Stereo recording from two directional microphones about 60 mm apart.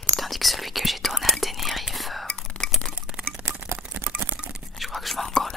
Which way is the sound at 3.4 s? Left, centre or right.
Right.